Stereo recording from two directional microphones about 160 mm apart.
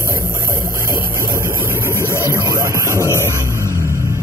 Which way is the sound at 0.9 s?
20° right (ahead or behind).